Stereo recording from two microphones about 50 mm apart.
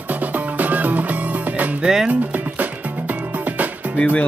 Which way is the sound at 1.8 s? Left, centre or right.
Centre.